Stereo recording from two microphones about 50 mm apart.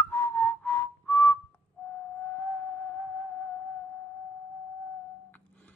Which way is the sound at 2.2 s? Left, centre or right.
Left.